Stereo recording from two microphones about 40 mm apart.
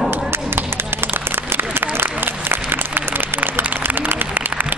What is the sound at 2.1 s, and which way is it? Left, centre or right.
Applause, right.